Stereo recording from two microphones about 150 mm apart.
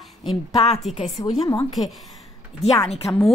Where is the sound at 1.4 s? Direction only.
25° left (ahead or behind).